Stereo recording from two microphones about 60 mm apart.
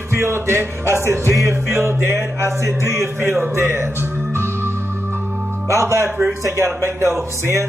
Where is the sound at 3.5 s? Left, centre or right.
Right.